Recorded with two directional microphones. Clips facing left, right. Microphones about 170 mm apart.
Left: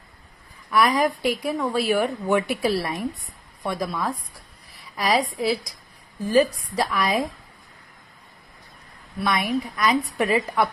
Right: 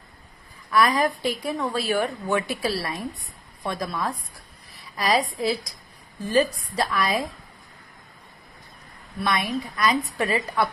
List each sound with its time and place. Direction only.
0.7 s a woman's voice: 15° left (ahead or behind)
9.2 s a woman's voice: 15° left (ahead or behind)